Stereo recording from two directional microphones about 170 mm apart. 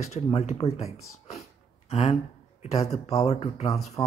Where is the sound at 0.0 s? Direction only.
40° left (ahead or behind).